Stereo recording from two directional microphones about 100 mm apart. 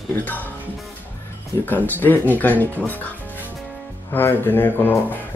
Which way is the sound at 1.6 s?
20° left (ahead or behind).